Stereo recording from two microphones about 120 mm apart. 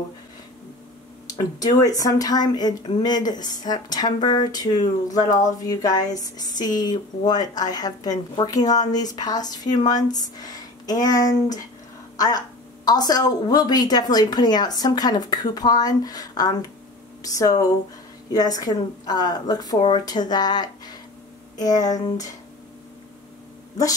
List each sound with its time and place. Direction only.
1.3 s speech: 30° left (ahead or behind)